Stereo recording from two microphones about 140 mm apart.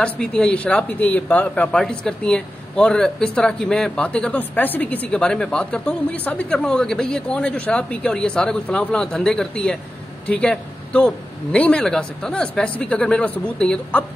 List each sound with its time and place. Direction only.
0.0 s speech: 5° left (ahead or behind)